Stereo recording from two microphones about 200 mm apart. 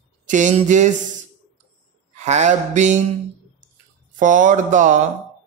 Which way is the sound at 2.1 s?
35° right (ahead or behind).